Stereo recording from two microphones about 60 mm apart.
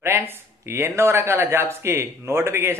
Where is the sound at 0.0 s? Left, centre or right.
Right.